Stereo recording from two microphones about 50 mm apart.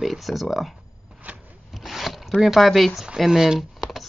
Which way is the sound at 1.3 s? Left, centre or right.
Right.